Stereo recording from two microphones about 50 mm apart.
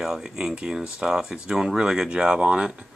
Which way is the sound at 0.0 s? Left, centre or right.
Centre.